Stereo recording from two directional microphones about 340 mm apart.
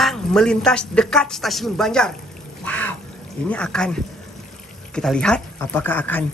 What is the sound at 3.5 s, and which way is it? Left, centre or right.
Speech, centre.